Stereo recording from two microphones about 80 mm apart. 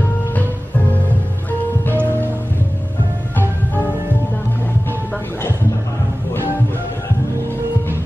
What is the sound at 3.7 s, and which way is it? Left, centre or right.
Music, left.